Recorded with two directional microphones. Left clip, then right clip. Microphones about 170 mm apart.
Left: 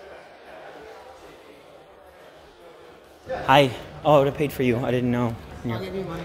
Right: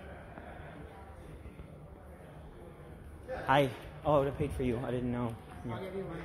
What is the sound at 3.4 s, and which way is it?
A man's voice, 15° left (ahead or behind).